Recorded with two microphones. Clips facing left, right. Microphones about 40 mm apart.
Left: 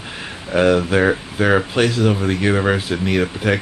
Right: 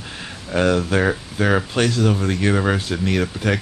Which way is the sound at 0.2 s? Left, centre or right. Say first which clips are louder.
Left 3 dB; centre.